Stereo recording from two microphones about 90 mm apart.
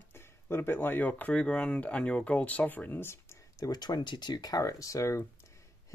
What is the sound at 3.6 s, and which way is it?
Speech, 50° left (ahead or behind).